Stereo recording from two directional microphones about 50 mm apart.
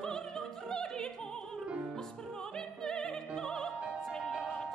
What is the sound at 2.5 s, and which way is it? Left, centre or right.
Music, centre.